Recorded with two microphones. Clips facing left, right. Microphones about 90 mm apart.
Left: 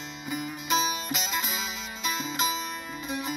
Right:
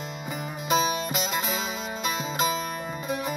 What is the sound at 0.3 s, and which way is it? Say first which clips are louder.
Music: right 2 dB; 45° right (ahead or behind).